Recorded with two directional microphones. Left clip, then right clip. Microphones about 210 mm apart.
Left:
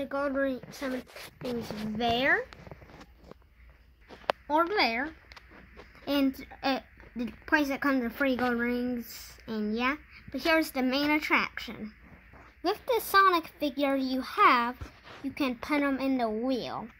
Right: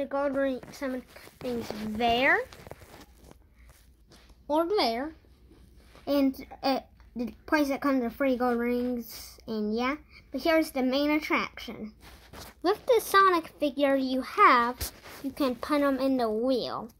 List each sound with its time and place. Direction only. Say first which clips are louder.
0.0 s a woman's voice: right 2 dB; 30° left (ahead or behind)
2.0 s speech: right 2 dB; 20° left (ahead or behind)
4.5 s speech: right 1 dB; 15° left (ahead or behind)
6.0 s a woman's voice: right 2 dB; 20° left (ahead or behind)
12.6 s speech: right 4 dB; 35° left (ahead or behind)